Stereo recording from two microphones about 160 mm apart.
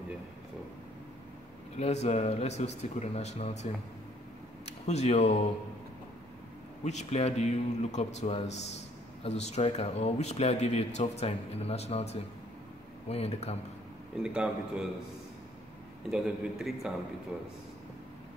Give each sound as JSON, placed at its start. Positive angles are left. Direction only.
{"t": 1.8, "sound": "speech", "side_deg": 40}
{"t": 4.8, "sound": "speech", "side_deg": 40}
{"t": 6.8, "sound": "speech", "side_deg": 45}
{"t": 14.1, "sound": "a man's voice", "side_deg": -5}
{"t": 16.1, "sound": "a man's voice", "side_deg": -5}